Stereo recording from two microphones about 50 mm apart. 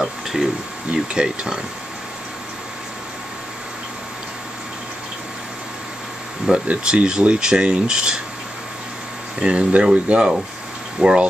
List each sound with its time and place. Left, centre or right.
0.0 s speech: centre
0.9 s speech: centre
6.5 s speech: centre
9.4 s speech: right